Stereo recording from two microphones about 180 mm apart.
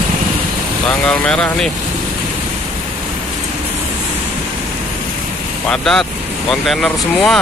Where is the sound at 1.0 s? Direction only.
5° left (ahead or behind).